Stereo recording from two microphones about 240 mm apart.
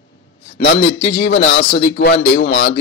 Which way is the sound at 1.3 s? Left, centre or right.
Left.